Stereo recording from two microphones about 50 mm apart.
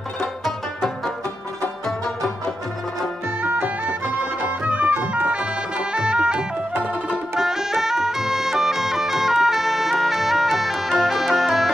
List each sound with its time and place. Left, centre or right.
0.7 s music: centre
3.4 s music: right; by 11.7 s centre